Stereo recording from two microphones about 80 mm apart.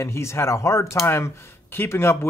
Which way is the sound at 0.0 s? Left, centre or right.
Left.